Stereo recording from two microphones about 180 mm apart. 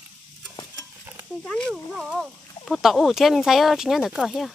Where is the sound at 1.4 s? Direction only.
5° left (ahead or behind).